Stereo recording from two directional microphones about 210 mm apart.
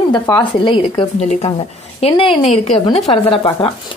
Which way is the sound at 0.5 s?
25° left (ahead or behind).